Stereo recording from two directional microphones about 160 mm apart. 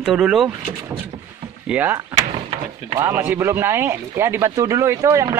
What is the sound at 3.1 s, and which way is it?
Speech, 15° right (ahead or behind).